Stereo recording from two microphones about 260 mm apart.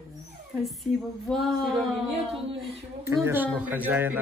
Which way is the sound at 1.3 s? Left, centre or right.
Centre.